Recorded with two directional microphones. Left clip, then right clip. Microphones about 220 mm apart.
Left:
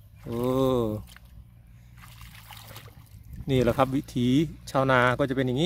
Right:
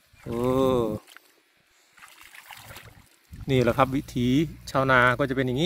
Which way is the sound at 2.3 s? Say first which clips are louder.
Right 2 dB; 50° left (ahead or behind).